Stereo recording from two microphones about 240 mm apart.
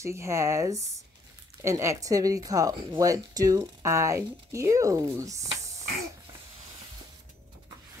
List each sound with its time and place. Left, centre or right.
0.0 s speech: centre
5.4 s hiss: right